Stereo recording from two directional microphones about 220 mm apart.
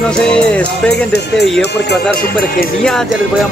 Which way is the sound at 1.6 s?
50° left (ahead or behind).